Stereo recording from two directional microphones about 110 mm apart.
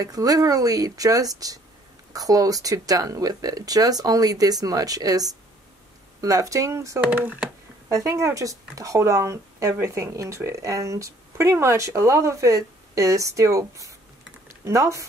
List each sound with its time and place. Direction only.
0.0 s speech: 35° right (ahead or behind)
7.0 s speech: 15° right (ahead or behind)
7.9 s speech: 30° right (ahead or behind)